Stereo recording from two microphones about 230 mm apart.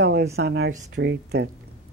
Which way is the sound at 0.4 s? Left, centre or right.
Right.